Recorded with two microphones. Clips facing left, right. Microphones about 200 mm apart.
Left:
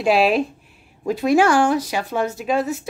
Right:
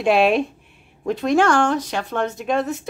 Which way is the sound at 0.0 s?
Centre (ahead or behind).